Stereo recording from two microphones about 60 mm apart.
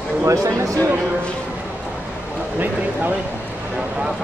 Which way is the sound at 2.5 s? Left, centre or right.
Right.